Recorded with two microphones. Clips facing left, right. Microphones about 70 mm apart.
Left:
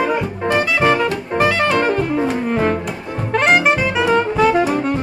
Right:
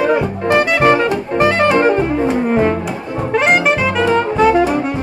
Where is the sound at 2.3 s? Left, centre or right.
Centre.